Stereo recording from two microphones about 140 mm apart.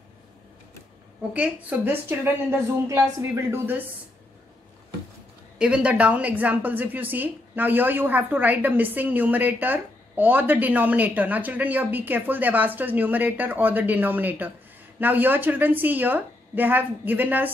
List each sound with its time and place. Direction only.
1.3 s a woman's voice: 10° right (ahead or behind)
5.6 s a woman's voice: 5° right (ahead or behind)